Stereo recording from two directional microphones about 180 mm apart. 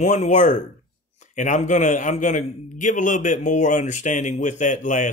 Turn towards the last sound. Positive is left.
turn(degrees=45)  # may be behind; listen again after turning